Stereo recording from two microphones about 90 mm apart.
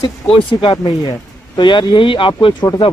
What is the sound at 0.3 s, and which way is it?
Speech, 70° left (ahead or behind).